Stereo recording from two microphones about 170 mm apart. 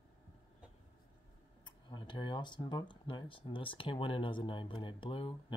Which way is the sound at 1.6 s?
25° left (ahead or behind).